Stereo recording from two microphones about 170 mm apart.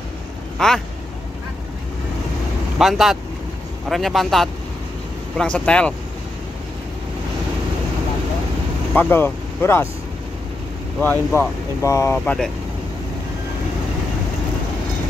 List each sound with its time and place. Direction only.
0.6 s a man's voice: centre (ahead or behind)
2.8 s a man's voice: centre (ahead or behind)
8.9 s speech: 10° left (ahead or behind)
11.0 s speech: 15° left (ahead or behind)